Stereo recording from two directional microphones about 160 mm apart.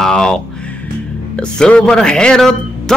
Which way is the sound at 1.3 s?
5° left (ahead or behind).